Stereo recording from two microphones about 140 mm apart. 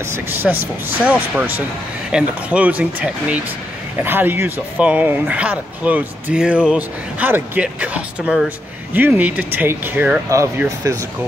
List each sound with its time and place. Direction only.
0.0 s speech: 15° right (ahead or behind)
10.8 s speech: 20° right (ahead or behind)